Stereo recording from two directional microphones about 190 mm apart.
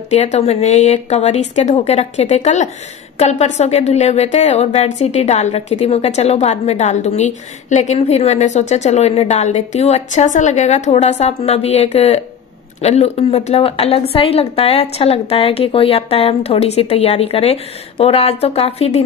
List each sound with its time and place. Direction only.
0.1 s speech: 35° left (ahead or behind)